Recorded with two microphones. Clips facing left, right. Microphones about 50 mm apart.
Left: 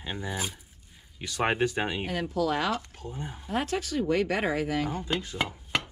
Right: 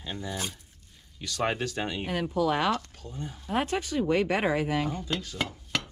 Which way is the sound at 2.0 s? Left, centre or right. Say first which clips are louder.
Right 5 dB; right.